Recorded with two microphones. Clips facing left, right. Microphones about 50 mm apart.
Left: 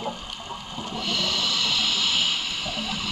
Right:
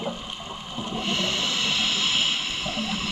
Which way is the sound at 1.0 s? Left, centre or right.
Centre.